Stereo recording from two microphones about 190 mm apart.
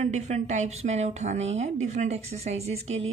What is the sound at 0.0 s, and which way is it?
A woman's voice, 35° right (ahead or behind).